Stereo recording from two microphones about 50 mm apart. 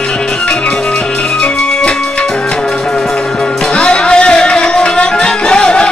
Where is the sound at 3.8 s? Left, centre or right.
Centre.